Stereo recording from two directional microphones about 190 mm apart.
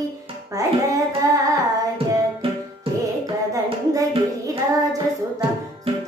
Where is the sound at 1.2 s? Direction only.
20° right (ahead or behind).